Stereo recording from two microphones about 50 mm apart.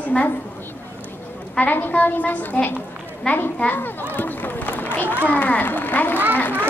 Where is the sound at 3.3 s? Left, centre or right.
Left.